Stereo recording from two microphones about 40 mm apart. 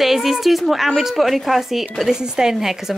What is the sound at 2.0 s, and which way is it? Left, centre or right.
Speech, centre.